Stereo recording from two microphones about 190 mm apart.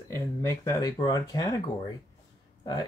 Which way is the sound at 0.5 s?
15° left (ahead or behind).